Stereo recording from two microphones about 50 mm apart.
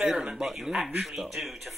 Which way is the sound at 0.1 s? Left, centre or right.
Centre.